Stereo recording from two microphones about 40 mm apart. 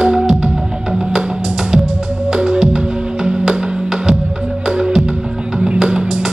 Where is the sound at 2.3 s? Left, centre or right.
Centre.